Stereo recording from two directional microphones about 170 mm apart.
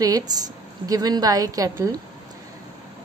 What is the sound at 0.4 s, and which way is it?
A woman's voice, 20° right (ahead or behind).